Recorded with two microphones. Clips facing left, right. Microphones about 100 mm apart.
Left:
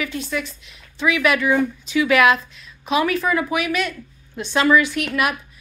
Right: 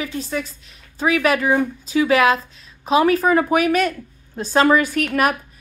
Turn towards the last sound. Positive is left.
turn(degrees=-40)  # may be behind; listen again after turning